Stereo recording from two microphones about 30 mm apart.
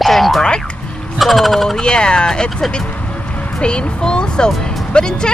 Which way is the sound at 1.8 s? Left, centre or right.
Left.